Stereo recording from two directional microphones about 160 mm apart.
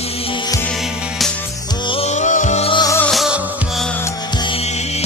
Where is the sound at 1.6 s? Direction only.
30° left (ahead or behind).